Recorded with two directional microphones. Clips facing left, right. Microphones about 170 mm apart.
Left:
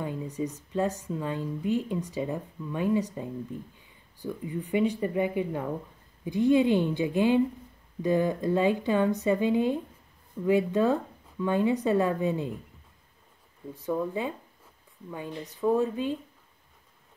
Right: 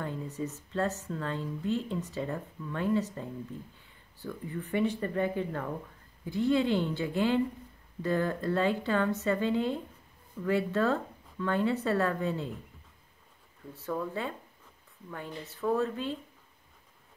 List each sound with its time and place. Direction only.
0.0 s a woman's voice: 15° left (ahead or behind)
13.7 s a woman's voice: 15° left (ahead or behind)